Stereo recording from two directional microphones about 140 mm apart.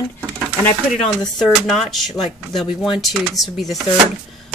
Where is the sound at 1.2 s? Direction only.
5° left (ahead or behind).